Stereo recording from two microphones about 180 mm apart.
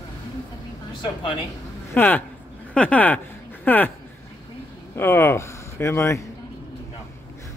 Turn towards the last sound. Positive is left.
turn(degrees=15)  # may be behind; listen again after turning